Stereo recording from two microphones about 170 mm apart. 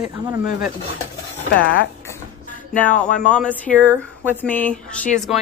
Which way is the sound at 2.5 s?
10° left (ahead or behind).